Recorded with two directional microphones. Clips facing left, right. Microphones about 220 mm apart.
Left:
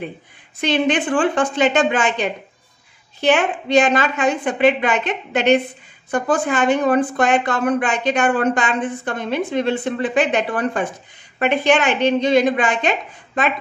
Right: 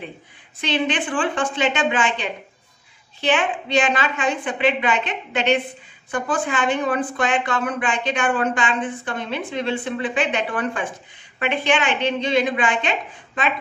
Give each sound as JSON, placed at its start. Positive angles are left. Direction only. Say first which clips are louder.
{"t": 0.6, "sound": "a woman's voice", "louder": "left 5 dB", "side_deg": 45}